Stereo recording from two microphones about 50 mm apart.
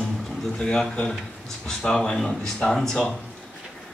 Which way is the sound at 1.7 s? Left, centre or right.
Centre.